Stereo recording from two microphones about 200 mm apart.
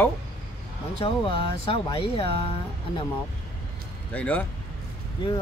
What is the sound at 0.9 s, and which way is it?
Speech, 25° left (ahead or behind).